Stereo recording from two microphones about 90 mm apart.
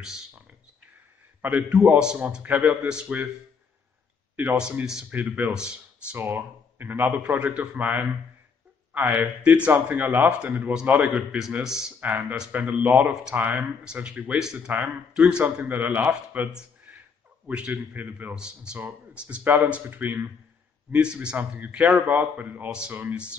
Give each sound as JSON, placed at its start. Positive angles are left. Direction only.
{"t": 0.0, "sound": "speech", "side_deg": -5}
{"t": 1.4, "sound": "a man's voice", "side_deg": -15}
{"t": 5.1, "sound": "a man's voice", "side_deg": -15}
{"t": 6.1, "sound": "a man's voice", "side_deg": -20}
{"t": 12.0, "sound": "a man's voice", "side_deg": -20}